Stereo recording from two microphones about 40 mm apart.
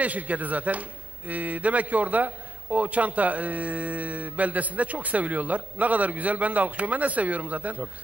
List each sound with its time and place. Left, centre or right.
0.0 s speech: right